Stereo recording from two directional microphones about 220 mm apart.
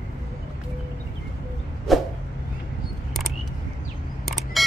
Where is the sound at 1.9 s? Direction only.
Centre (ahead or behind).